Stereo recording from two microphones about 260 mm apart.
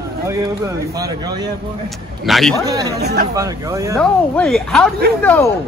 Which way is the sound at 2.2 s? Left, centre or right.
Centre.